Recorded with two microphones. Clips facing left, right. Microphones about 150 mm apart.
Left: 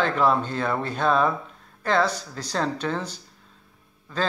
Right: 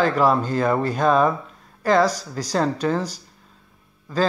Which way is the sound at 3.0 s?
40° right (ahead or behind).